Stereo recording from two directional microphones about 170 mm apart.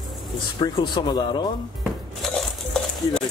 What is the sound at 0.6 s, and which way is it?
Speech, 30° left (ahead or behind).